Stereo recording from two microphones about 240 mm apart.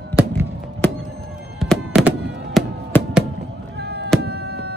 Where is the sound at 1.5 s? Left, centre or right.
Centre.